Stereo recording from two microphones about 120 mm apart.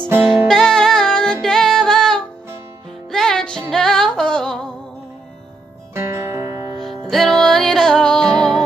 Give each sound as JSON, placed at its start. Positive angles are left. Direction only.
{"t": 0.5, "sound": "music", "side_deg": 5}
{"t": 5.9, "sound": "music", "side_deg": -20}
{"t": 6.8, "sound": "music", "side_deg": 0}